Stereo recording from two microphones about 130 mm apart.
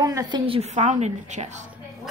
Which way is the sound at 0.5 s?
60° right (ahead or behind).